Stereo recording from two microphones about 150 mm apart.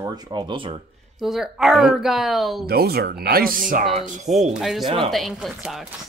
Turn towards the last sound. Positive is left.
turn(degrees=0)  # may be behind; listen again after turning